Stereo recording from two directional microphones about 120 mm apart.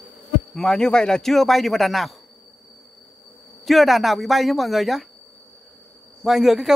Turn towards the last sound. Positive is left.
turn(degrees=-5)  # may be behind; listen again after turning